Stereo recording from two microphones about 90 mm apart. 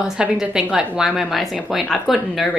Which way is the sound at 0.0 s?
10° right (ahead or behind).